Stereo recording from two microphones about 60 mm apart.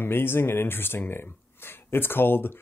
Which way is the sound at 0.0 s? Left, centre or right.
Left.